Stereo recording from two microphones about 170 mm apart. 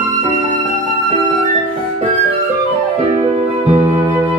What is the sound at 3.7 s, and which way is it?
Flute, 25° right (ahead or behind).